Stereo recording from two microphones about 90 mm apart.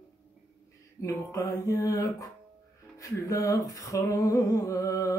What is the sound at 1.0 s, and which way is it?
Music, 35° left (ahead or behind).